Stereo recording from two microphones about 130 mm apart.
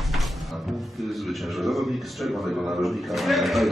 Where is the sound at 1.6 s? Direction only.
Centre (ahead or behind).